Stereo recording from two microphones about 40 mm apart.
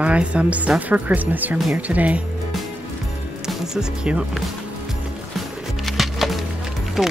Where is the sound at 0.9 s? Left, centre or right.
Right.